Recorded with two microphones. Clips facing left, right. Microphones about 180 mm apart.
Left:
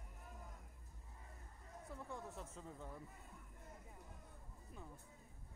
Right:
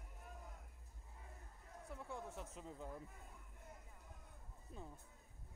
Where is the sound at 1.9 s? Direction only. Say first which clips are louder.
Right 1 dB; centre (ahead or behind).